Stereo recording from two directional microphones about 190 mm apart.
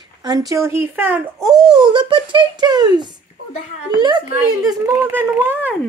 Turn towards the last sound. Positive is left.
turn(degrees=-10)  # may be behind; listen again after turning